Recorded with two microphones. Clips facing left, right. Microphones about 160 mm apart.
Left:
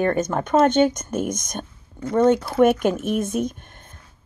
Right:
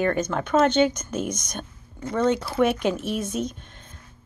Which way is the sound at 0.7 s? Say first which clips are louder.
Left 3 dB; 45° left (ahead or behind).